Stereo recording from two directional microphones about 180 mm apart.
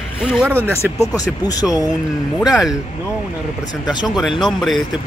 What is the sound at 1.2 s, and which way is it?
Speech, 20° left (ahead or behind).